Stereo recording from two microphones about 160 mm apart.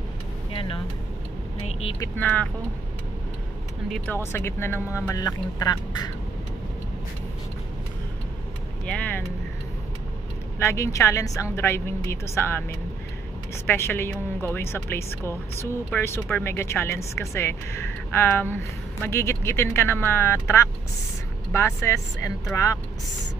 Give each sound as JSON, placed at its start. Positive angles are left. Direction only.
{"t": 0.5, "sound": "vehicle", "side_deg": 35}
{"t": 2.0, "sound": "a woman's voice", "side_deg": 10}
{"t": 3.9, "sound": "a woman's voice", "side_deg": 10}
{"t": 8.8, "sound": "speech", "side_deg": 10}
{"t": 10.6, "sound": "a woman's voice", "side_deg": 20}